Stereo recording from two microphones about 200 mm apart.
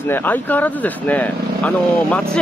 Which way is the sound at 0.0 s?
10° left (ahead or behind).